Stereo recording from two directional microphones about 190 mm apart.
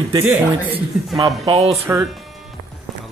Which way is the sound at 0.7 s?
25° right (ahead or behind).